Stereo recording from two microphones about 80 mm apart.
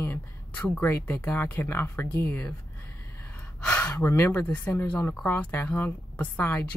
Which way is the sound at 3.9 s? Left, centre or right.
Left.